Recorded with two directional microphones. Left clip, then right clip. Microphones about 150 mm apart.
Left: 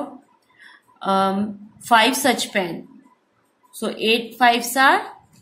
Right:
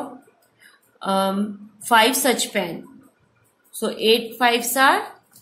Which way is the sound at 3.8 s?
15° left (ahead or behind).